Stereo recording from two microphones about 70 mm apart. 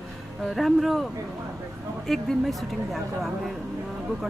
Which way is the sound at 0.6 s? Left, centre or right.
Centre.